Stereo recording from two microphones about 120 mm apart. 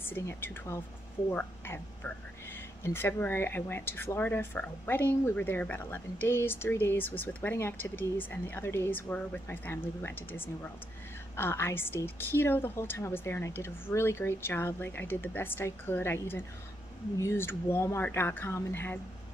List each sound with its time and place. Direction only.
0.0 s a woman's voice: 20° left (ahead or behind)